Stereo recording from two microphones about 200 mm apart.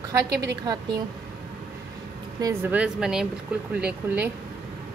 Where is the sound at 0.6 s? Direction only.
20° right (ahead or behind).